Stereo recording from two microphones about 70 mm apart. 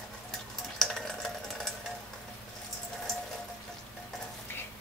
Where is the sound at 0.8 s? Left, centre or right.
Centre.